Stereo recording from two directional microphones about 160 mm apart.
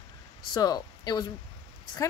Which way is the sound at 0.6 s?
25° left (ahead or behind).